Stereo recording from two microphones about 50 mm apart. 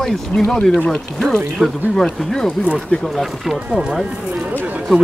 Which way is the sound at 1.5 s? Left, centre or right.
Centre.